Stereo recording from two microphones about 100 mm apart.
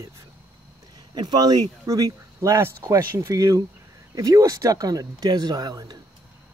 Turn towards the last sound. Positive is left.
turn(degrees=-40)  # may be behind; listen again after turning